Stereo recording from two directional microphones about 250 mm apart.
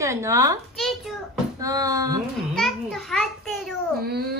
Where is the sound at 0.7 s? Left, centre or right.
Centre.